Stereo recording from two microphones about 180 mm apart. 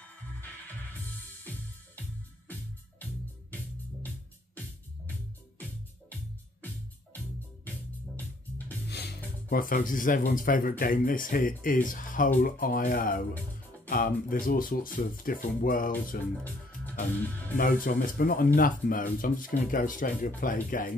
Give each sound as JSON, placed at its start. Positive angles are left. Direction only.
{"t": 8.9, "sound": "speech", "side_deg": 60}
{"t": 17.6, "sound": "speech", "side_deg": 50}